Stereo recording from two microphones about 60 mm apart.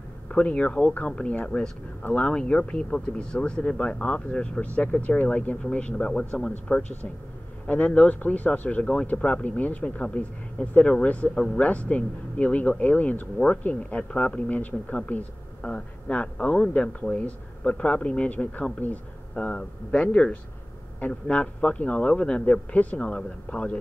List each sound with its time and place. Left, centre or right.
0.3 s speech: left